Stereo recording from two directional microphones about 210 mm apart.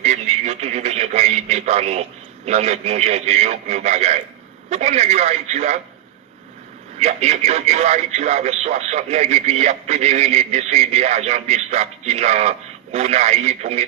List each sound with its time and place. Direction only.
0.0 s radio: 30° right (ahead or behind)
4.6 s speech: 30° right (ahead or behind)
7.0 s speech: 30° right (ahead or behind)